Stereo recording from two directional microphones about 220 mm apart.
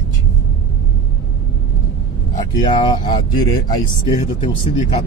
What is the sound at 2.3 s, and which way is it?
Speech, 20° left (ahead or behind).